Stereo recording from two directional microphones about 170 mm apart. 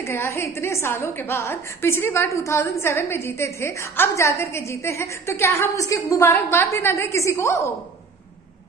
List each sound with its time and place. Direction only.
0.0 s a woman's voice: 15° left (ahead or behind)